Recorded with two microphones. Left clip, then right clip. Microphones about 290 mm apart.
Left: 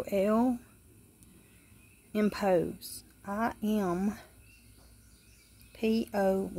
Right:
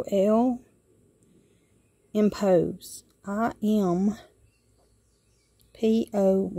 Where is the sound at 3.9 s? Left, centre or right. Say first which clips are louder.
Right 6 dB; right.